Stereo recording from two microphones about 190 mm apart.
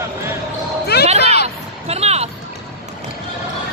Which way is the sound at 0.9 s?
60° left (ahead or behind).